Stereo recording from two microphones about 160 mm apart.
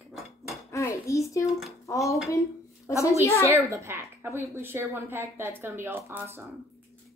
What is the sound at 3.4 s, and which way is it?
A woman's voice, 20° right (ahead or behind).